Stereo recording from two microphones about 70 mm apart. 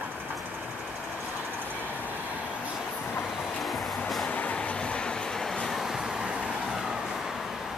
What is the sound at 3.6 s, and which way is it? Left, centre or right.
Music, centre.